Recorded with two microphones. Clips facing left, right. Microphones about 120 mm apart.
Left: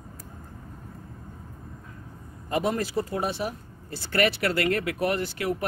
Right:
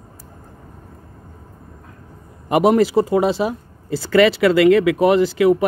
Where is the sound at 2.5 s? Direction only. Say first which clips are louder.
Right 12 dB; 90° right.